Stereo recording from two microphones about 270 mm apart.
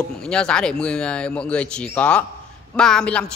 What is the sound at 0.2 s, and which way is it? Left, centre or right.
A man's voice, centre.